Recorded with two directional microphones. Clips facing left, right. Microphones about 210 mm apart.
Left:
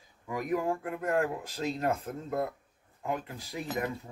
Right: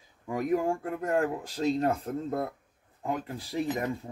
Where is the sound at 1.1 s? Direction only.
35° right (ahead or behind).